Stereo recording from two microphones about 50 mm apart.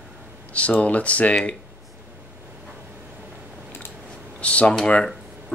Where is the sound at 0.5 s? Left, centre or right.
Left.